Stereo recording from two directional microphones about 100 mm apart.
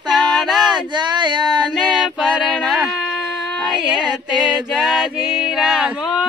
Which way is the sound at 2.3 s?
Centre (ahead or behind).